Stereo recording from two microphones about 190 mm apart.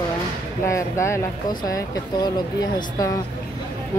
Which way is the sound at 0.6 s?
15° left (ahead or behind).